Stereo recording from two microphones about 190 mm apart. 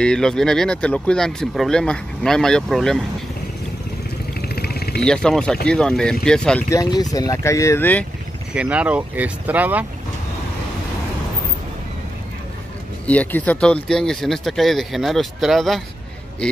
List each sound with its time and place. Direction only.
0.0 s speech: 5° left (ahead or behind)
4.6 s vehicle: 55° left (ahead or behind)
5.0 s speech: 5° left (ahead or behind)
6.7 s speech: 20° left (ahead or behind)
8.5 s speech: 5° right (ahead or behind)
13.0 s speech: 5° left (ahead or behind)